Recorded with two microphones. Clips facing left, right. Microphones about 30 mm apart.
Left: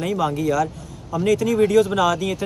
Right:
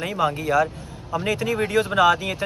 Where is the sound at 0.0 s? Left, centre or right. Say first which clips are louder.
Left 2 dB; right.